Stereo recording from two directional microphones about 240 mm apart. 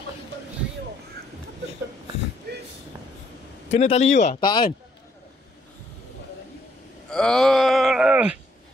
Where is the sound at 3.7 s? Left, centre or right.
Left.